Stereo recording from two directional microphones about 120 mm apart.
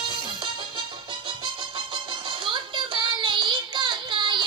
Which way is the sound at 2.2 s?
45° right (ahead or behind).